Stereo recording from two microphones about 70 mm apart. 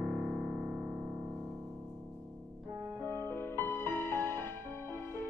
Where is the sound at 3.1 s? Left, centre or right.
Left.